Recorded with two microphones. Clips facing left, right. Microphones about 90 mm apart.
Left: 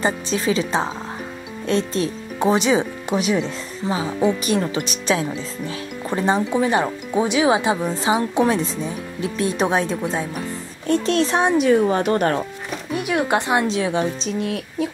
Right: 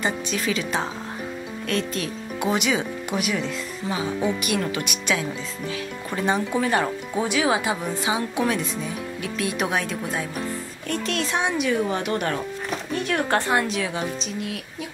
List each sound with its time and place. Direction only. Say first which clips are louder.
0.0 s a woman's voice: left 4 dB; 30° left (ahead or behind)
12.6 s a woman's voice: left 1 dB; 10° left (ahead or behind); by 14.5 s 30° left (ahead or behind)